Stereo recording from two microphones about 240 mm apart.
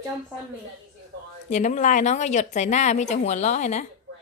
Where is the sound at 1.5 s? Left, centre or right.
Left.